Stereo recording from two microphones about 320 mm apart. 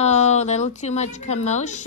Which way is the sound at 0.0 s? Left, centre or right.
Left.